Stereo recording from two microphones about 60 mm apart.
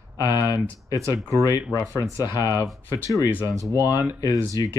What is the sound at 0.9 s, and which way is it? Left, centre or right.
Speech, right.